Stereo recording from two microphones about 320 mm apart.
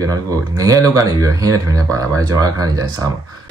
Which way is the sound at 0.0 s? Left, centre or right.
Centre.